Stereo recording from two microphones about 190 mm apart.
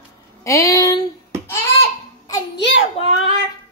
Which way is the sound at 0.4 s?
15° left (ahead or behind).